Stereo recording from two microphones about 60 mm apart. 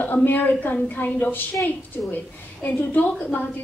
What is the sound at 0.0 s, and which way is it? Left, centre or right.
A woman's voice, left.